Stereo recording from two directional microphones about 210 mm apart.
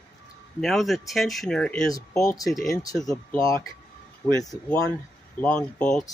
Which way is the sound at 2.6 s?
15° left (ahead or behind).